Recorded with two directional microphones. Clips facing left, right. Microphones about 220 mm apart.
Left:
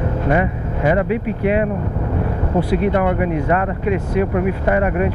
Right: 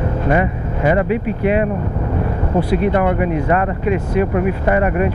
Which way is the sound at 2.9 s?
15° right (ahead or behind).